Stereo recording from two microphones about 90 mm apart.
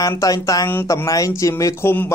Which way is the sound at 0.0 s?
40° left (ahead or behind).